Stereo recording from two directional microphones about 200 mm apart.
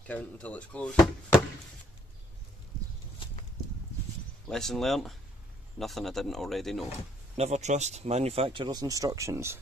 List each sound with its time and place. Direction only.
0.0 s speech: 5° left (ahead or behind)
4.5 s speech: centre (ahead or behind)
7.3 s speech: 35° right (ahead or behind); by 9.6 s 15° right (ahead or behind)